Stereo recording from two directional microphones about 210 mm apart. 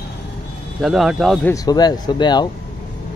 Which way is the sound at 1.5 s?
20° left (ahead or behind).